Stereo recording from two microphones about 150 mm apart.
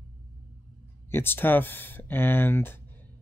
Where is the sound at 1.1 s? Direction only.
15° left (ahead or behind).